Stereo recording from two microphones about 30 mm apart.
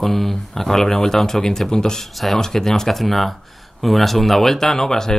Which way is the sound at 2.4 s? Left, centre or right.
Centre.